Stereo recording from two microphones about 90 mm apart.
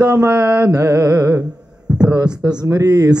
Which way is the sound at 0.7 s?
35° right (ahead or behind).